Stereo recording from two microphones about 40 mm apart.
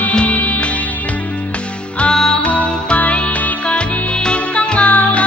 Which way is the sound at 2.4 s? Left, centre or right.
Left.